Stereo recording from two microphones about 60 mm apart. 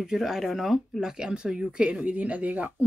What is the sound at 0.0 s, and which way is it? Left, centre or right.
Speech, centre.